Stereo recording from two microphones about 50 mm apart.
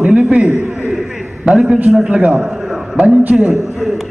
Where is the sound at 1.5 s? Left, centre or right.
Centre.